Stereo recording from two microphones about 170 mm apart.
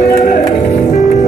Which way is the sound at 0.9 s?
40° left (ahead or behind).